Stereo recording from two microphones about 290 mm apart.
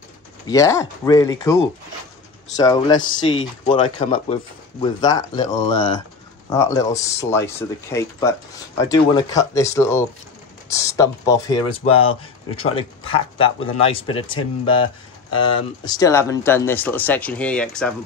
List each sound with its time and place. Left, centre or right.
0.5 s speech: centre